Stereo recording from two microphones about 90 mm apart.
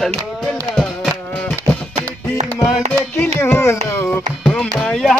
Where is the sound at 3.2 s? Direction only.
30° left (ahead or behind).